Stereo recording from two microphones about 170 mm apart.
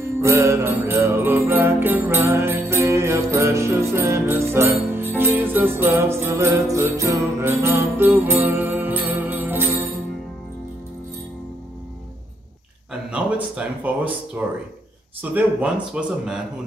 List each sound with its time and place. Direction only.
0.2 s music: 15° right (ahead or behind)
2.7 s jingle bell: 15° right (ahead or behind)
13.1 s a sound: 5° right (ahead or behind)
14.4 s speech: 10° right (ahead or behind)